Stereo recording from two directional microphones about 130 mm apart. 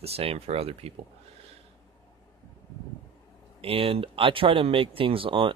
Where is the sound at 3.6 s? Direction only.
45° right (ahead or behind).